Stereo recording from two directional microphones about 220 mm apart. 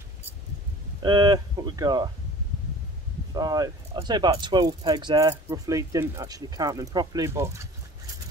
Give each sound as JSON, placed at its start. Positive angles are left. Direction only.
{"t": 1.0, "sound": "speech", "side_deg": -20}
{"t": 3.3, "sound": "speech", "side_deg": -15}